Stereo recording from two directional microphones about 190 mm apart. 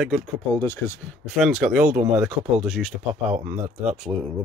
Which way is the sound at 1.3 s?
Centre (ahead or behind).